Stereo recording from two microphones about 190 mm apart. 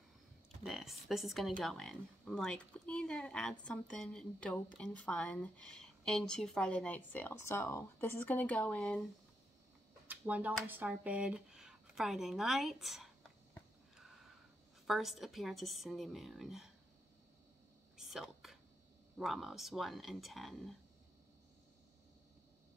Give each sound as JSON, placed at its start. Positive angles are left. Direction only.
{"t": 0.7, "sound": "speech", "side_deg": 0}
{"t": 10.0, "sound": "a sound", "side_deg": -10}
{"t": 14.9, "sound": "speech", "side_deg": 0}
{"t": 17.9, "sound": "whispering", "side_deg": 0}
{"t": 19.1, "sound": "speech", "side_deg": 0}